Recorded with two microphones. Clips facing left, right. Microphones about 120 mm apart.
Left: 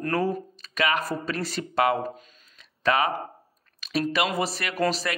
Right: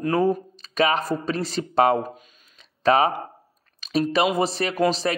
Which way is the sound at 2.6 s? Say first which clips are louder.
Right 5 dB; 30° right (ahead or behind).